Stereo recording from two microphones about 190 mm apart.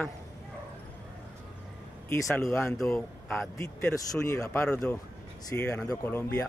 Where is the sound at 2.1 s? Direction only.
15° left (ahead or behind).